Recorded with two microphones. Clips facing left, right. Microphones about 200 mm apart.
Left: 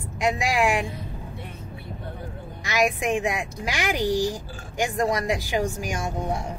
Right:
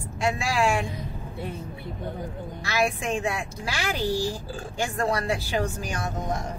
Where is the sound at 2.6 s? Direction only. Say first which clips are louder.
Left 3 dB; 15° left (ahead or behind).